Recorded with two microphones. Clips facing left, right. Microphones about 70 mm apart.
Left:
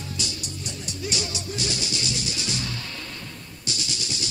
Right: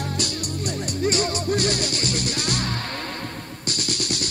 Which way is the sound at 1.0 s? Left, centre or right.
Right.